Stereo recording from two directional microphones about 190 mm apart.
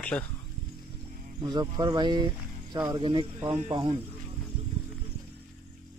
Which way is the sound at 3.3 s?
15° right (ahead or behind).